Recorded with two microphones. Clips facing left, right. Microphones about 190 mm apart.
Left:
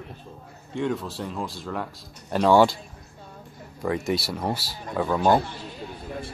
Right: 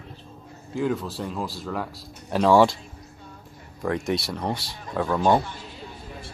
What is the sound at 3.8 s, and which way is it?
A man's voice, centre (ahead or behind).